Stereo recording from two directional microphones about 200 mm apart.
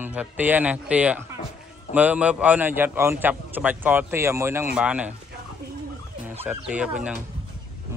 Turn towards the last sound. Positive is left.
turn(degrees=-5)  # may be behind; listen again after turning